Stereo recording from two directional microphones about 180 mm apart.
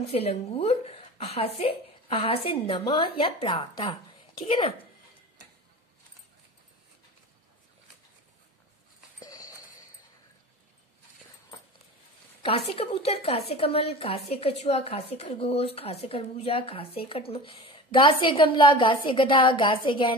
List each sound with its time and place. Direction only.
0.0 s a woman's voice: 35° left (ahead or behind)
9.2 s a sound: 20° left (ahead or behind)
12.4 s a woman's voice: 30° left (ahead or behind)